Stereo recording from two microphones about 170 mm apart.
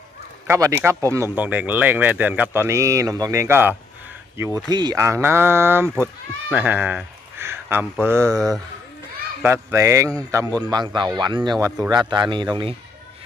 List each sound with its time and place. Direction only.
0.5 s speech: 15° right (ahead or behind)
9.4 s a man's voice: 15° right (ahead or behind)